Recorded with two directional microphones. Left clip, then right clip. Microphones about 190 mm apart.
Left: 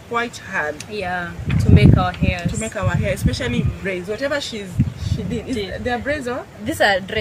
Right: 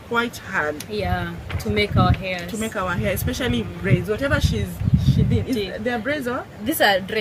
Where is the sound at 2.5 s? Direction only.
10° right (ahead or behind).